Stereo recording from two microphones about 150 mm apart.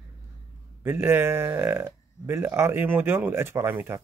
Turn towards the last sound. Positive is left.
turn(degrees=-15)  # may be behind; listen again after turning